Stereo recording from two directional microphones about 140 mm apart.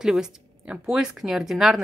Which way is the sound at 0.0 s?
5° right (ahead or behind).